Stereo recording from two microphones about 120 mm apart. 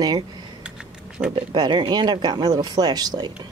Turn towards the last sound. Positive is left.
turn(degrees=-35)  # may be behind; listen again after turning